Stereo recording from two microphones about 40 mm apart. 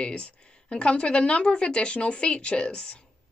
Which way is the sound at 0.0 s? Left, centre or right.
Left.